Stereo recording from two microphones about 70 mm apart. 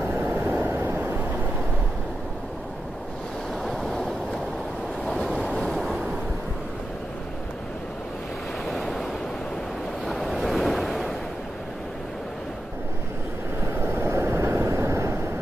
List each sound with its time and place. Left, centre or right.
0.0 s vehicle: right
3.6 s train: centre
5.0 s waves: centre
8.6 s waves: centre
10.0 s waves: centre
13.7 s vehicle: right